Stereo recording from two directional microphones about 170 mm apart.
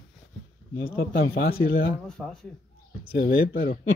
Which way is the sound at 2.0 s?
5° left (ahead or behind).